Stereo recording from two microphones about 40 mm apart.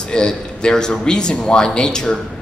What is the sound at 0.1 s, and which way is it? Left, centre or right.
Speech, left.